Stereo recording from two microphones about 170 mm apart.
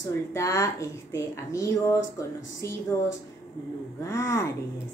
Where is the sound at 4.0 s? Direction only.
15° left (ahead or behind).